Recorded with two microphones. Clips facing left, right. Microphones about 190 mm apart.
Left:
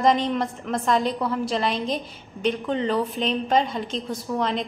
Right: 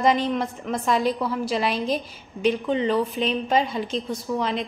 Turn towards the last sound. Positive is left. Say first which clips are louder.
# even
turn(degrees=-5)  # may be behind; listen again after turning